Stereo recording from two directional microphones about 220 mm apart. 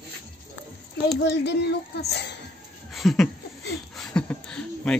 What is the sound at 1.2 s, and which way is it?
Speech, 55° left (ahead or behind).